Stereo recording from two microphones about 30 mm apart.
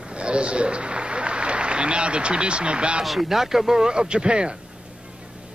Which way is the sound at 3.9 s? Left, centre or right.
Right.